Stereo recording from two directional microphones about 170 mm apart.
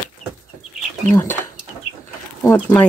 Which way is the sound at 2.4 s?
15° left (ahead or behind).